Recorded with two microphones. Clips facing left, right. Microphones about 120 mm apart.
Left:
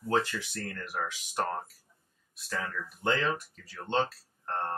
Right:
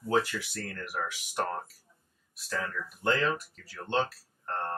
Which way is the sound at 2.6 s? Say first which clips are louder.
Right 1 dB; 20° left (ahead or behind).